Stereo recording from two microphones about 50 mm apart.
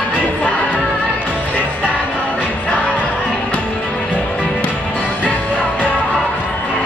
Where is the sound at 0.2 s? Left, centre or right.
Left.